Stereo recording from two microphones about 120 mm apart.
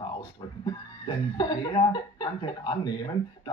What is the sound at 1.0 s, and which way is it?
Speech, 40° left (ahead or behind).